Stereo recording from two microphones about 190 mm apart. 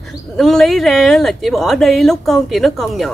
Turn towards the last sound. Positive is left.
turn(degrees=0)  # may be behind; listen again after turning